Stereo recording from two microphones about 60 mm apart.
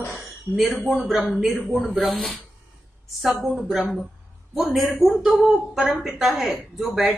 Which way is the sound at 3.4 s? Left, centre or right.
Centre.